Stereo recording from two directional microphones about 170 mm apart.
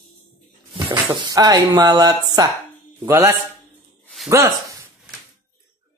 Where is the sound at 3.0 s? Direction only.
15° right (ahead or behind).